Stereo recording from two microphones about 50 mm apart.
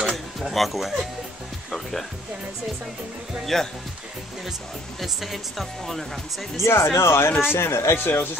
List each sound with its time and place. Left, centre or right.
0.4 s speech: centre
1.7 s music: centre
3.5 s speech: centre
5.0 s speech: centre
6.6 s speech: left